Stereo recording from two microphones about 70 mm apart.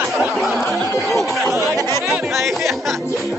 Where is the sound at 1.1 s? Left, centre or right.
Centre.